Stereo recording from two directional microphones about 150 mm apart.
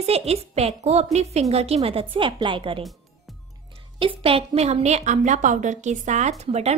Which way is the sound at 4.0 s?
40° right (ahead or behind).